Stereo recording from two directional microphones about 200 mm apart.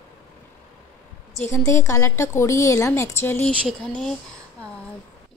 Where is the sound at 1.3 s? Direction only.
15° left (ahead or behind).